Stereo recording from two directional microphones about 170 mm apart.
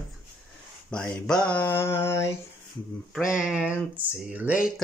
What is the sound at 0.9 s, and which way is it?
Speech, 5° left (ahead or behind).